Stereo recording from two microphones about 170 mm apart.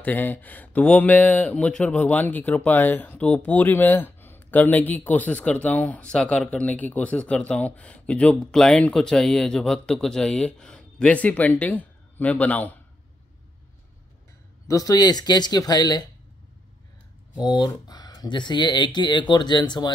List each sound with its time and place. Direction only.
0.0 s speech: 10° left (ahead or behind)
14.7 s speech: 20° left (ahead or behind)
17.5 s speech: 25° left (ahead or behind)